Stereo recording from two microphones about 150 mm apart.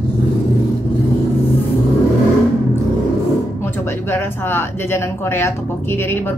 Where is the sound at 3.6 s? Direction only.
15° left (ahead or behind).